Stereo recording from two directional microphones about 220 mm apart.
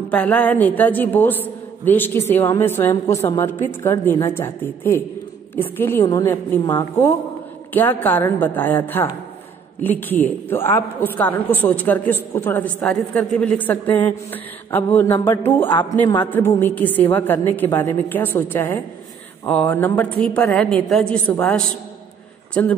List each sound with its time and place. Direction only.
0.1 s a woman's voice: 5° left (ahead or behind)